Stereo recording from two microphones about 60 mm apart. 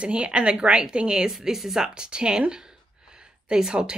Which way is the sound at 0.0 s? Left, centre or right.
Centre.